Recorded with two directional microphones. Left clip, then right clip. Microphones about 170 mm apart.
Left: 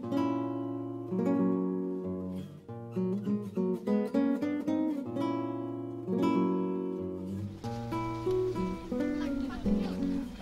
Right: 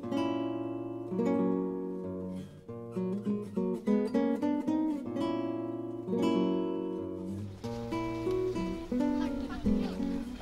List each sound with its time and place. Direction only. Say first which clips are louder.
0.1 s guitar: left 1 dB; 40° right (ahead or behind)
1.1 s music: even; 35° right (ahead or behind)
3.8 s music: right 1 dB; 40° right (ahead or behind)
7.9 s music: left 1 dB; centre (ahead or behind)